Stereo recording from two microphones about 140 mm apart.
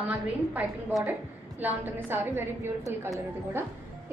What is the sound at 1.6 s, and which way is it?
A woman's voice, 15° right (ahead or behind).